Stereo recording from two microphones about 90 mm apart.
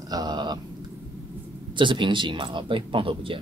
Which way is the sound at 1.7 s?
65° right (ahead or behind).